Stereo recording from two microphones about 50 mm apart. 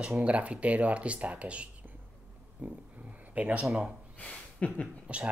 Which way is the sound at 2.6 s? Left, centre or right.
Right.